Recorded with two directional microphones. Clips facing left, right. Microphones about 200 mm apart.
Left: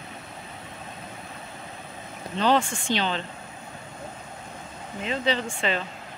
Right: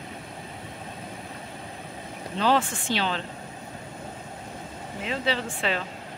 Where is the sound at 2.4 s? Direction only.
5° right (ahead or behind).